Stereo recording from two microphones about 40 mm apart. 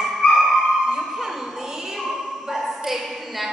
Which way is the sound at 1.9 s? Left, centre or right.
Centre.